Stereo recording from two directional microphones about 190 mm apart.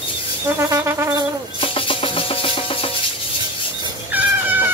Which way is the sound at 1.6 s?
30° left (ahead or behind).